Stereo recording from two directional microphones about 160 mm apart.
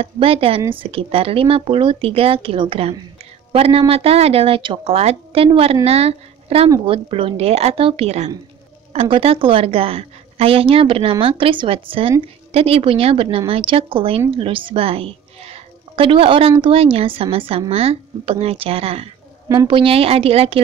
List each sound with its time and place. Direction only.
0.0 s a woman's voice: 35° right (ahead or behind)